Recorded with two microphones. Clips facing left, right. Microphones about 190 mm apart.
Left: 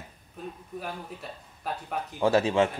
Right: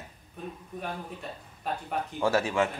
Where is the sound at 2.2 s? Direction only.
20° left (ahead or behind).